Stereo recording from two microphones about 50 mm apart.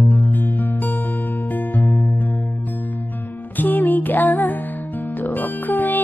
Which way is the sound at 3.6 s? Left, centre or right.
Left.